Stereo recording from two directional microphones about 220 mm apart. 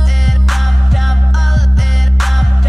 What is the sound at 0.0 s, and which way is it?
Music, centre (ahead or behind).